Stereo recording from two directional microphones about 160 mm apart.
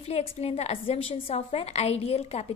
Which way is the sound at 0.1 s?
40° left (ahead or behind).